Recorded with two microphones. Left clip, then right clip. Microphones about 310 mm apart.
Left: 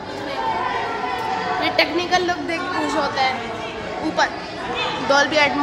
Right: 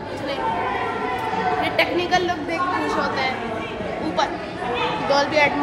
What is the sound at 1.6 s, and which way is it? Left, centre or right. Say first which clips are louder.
A woman's voice: left 1 dB; left.